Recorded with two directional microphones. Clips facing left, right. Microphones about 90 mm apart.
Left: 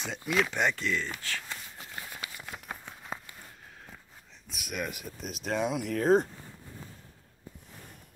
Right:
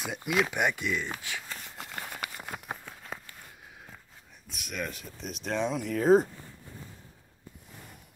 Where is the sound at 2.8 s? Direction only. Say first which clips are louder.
Left 1 dB; 20° left (ahead or behind).